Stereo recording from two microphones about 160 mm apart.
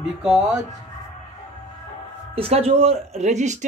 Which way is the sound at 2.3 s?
40° right (ahead or behind).